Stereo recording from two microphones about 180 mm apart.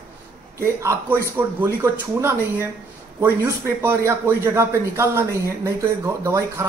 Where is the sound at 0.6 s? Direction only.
15° right (ahead or behind).